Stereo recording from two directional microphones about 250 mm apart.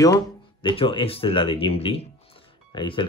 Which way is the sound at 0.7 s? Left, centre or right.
Centre.